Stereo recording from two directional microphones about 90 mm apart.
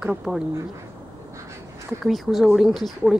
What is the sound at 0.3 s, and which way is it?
Speech, 25° right (ahead or behind).